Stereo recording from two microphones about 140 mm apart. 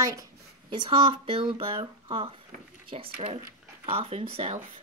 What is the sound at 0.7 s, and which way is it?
Speech, 35° right (ahead or behind).